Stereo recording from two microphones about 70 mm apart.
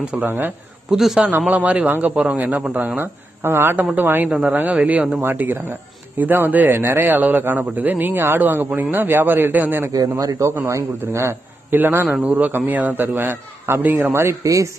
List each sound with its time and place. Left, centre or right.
0.0 s speech: right
0.9 s a man's voice: centre
1.5 s speech: right
3.0 s a man's voice: right
9.9 s a man's voice: right
10.7 s a man's voice: right
11.7 s speech: right
14.1 s a man's voice: right